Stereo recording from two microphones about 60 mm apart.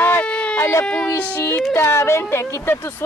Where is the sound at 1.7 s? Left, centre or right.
Left.